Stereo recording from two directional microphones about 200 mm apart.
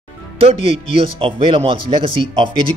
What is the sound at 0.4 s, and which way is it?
Speech, 30° right (ahead or behind).